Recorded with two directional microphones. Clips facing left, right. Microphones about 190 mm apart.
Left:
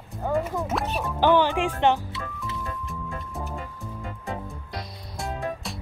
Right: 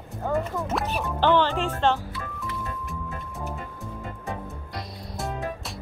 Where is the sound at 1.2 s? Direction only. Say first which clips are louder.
Left 2 dB; 10° left (ahead or behind).